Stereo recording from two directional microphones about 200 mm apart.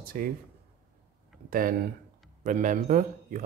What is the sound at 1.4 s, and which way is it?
Speech, 45° right (ahead or behind).